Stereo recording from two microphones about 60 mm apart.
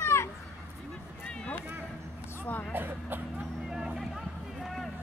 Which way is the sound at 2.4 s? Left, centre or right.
Left.